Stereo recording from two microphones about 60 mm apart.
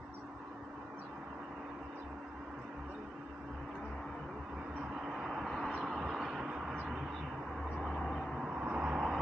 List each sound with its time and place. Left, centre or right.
5.1 s vehicle: centre
7.8 s vehicle: centre
8.4 s vehicle: centre